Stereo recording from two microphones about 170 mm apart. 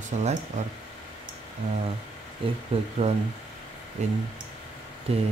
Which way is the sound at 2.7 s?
35° right (ahead or behind).